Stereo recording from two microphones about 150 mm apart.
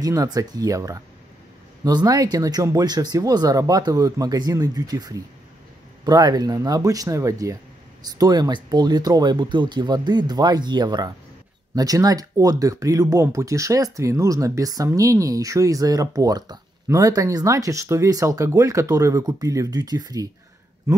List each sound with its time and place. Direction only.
0.0 s speech: 25° right (ahead or behind)